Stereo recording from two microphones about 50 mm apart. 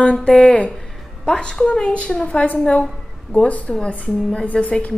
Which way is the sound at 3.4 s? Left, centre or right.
Left.